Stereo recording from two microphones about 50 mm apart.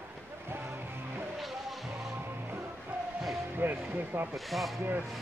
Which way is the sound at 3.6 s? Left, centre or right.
Right.